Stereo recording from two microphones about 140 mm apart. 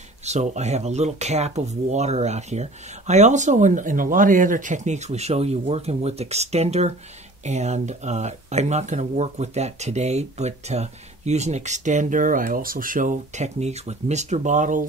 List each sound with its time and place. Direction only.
0.2 s speech: 55° right (ahead or behind)